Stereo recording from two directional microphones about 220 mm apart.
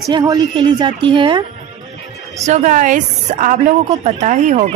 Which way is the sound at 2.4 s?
35° right (ahead or behind).